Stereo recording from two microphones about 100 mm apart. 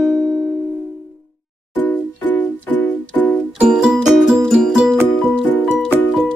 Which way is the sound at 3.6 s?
5° right (ahead or behind).